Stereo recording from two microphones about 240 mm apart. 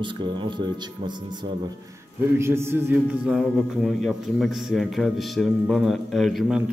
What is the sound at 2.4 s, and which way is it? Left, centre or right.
A man's voice, centre.